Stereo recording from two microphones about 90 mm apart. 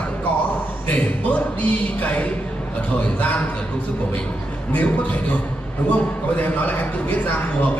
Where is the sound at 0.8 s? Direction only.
20° left (ahead or behind).